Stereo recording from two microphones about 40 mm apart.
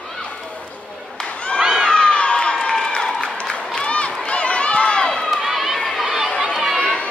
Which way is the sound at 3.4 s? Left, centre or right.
Left.